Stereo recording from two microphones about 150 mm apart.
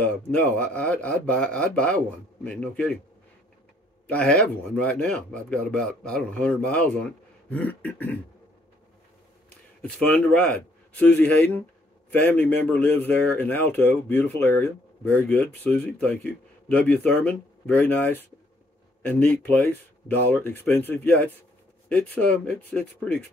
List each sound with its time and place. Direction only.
0.0 s speech: 10° left (ahead or behind)
4.1 s speech: 10° left (ahead or behind)
9.5 s a man's voice: 10° left (ahead or behind)